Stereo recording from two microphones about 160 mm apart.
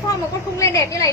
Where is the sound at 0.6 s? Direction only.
20° left (ahead or behind).